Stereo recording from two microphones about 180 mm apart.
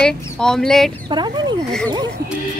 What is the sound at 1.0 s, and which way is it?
Speech, 25° right (ahead or behind).